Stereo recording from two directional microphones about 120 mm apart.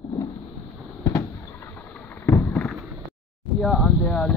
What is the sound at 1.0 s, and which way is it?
Thunder, 25° left (ahead or behind).